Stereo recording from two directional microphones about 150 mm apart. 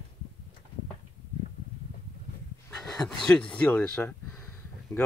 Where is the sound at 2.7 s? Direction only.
5° left (ahead or behind).